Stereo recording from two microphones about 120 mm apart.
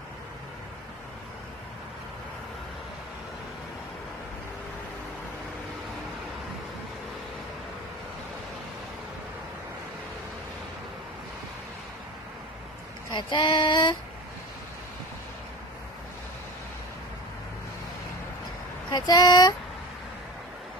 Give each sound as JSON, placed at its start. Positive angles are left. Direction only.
{"t": 13.1, "sound": "female singing", "side_deg": 40}
{"t": 18.9, "sound": "female singing", "side_deg": 35}